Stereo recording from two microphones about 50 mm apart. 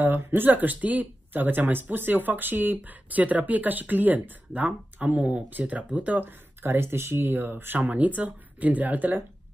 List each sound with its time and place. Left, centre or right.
0.0 s speech: right
7.8 s speech: right